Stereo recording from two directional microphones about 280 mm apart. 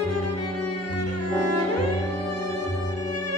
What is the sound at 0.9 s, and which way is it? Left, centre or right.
Cello, left.